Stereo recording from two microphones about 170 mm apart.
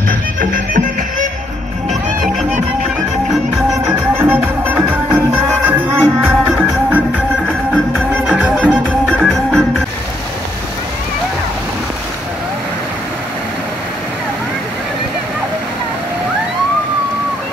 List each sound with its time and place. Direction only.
0.4 s music: 55° right (ahead or behind)
3.8 s music: 15° right (ahead or behind)
7.4 s music: 5° left (ahead or behind)
8.3 s music: 10° right (ahead or behind)
8.6 s music: 5° left (ahead or behind)